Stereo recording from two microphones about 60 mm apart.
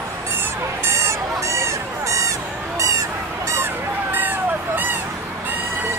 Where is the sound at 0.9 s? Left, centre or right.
Right.